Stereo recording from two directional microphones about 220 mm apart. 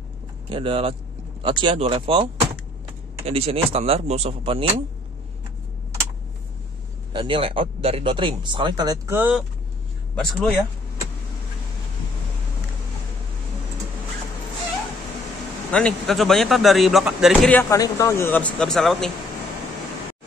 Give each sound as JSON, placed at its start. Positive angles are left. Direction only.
{"t": 0.5, "sound": "speech", "side_deg": -25}
{"t": 3.3, "sound": "speech", "side_deg": -25}
{"t": 7.1, "sound": "speech", "side_deg": -20}
{"t": 10.1, "sound": "a man's voice", "side_deg": 0}
{"t": 15.7, "sound": "a man's voice", "side_deg": 5}